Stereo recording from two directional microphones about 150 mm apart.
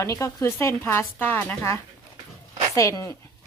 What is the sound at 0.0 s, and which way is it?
A woman's voice, 20° left (ahead or behind).